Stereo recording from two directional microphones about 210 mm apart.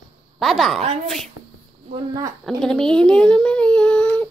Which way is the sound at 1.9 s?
20° right (ahead or behind).